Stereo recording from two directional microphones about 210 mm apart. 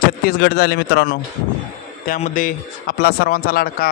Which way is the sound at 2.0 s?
40° left (ahead or behind).